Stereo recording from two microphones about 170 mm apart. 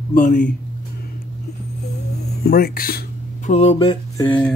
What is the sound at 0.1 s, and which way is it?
Speech, 55° left (ahead or behind).